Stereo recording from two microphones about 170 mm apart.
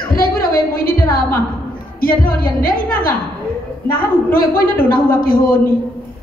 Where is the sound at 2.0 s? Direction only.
55° left (ahead or behind).